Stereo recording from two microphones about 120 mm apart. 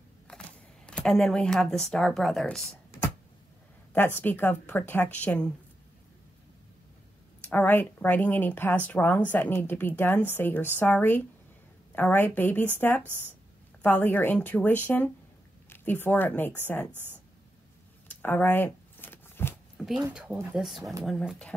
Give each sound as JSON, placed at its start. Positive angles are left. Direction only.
{"t": 0.3, "sound": "speech", "side_deg": 10}
{"t": 3.9, "sound": "speech", "side_deg": 15}
{"t": 7.4, "sound": "speech", "side_deg": 15}
{"t": 13.0, "sound": "a woman's voice", "side_deg": -15}
{"t": 13.8, "sound": "speech", "side_deg": 15}
{"t": 16.9, "sound": "a woman's voice", "side_deg": -15}
{"t": 18.0, "sound": "shuffling cards", "side_deg": 15}
{"t": 19.8, "sound": "speech", "side_deg": -5}